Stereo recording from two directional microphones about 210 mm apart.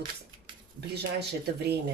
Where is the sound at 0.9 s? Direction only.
50° right (ahead or behind).